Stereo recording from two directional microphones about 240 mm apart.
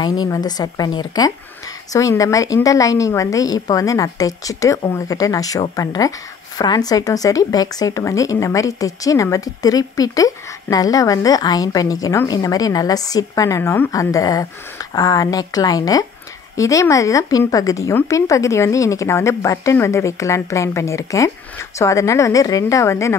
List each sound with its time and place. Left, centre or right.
0.0 s speech: centre